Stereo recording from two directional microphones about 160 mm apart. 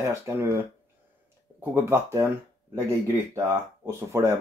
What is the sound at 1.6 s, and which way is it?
Speech, 15° right (ahead or behind).